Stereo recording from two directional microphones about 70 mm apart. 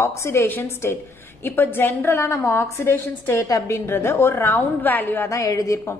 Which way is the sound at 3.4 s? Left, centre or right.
Left.